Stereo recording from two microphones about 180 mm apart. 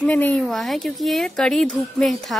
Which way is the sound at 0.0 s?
10° left (ahead or behind).